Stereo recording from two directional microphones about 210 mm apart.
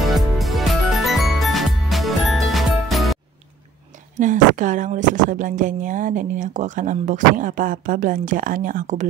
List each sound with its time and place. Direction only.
0.0 s music: centre (ahead or behind)
4.2 s speech: 35° right (ahead or behind)